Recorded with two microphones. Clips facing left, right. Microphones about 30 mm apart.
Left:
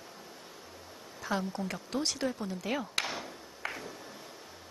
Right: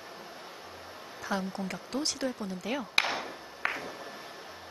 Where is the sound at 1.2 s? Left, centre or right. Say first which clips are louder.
Even; centre.